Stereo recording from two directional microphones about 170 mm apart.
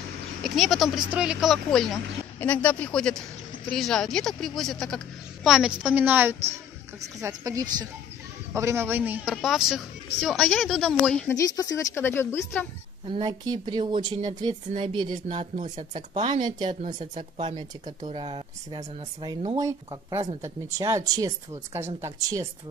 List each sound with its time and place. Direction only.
0.4 s a woman's voice: centre (ahead or behind)
11.3 s speech: 20° left (ahead or behind)
13.1 s speech: 25° right (ahead or behind)
15.5 s speech: 45° right (ahead or behind)
15.9 s a man's voice: 25° right (ahead or behind)